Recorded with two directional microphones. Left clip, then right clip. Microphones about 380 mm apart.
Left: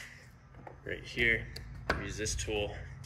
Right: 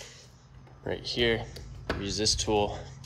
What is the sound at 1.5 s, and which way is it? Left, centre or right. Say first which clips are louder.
Speech: even; centre.